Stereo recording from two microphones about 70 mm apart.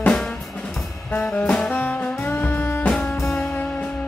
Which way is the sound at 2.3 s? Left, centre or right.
Left.